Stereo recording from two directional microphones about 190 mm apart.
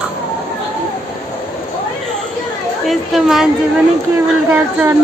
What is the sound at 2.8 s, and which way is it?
Speech, centre (ahead or behind).